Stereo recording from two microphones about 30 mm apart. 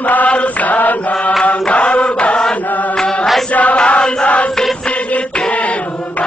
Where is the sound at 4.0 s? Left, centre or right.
Left.